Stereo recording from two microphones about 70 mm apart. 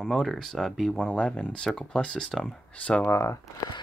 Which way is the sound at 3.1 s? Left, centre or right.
Left.